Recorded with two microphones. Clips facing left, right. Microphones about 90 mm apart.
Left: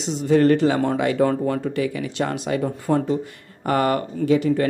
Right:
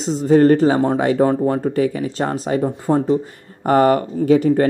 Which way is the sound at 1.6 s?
45° right (ahead or behind).